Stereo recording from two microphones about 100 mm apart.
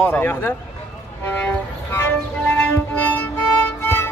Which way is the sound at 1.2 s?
15° left (ahead or behind).